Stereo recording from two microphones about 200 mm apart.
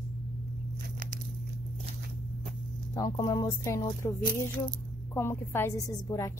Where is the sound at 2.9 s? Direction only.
20° left (ahead or behind).